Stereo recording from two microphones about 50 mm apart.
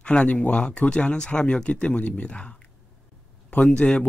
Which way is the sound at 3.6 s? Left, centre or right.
Left.